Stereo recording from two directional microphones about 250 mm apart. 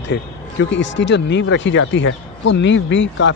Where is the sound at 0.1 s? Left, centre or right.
Left.